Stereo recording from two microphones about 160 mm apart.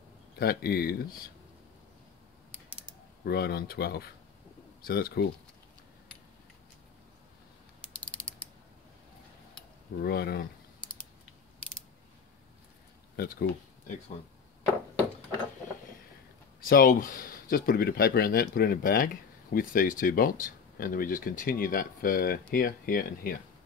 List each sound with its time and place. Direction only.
0.4 s speech: 75° left (ahead or behind)
3.3 s speech: 75° left (ahead or behind)
10.0 s speech: 80° left
13.1 s speech: 80° left
16.6 s speech: 60° left (ahead or behind)